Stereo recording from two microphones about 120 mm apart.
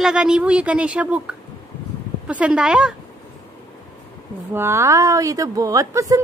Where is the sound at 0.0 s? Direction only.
5° right (ahead or behind).